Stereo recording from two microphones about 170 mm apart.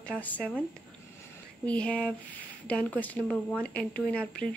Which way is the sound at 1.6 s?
5° left (ahead or behind).